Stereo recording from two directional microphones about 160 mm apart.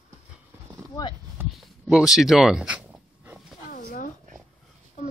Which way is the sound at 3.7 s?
55° left (ahead or behind).